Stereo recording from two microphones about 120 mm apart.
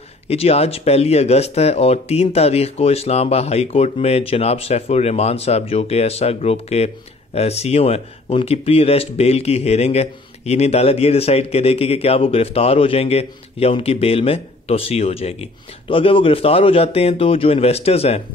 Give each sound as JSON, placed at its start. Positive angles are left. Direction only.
{"t": 0.3, "sound": "speech", "side_deg": 60}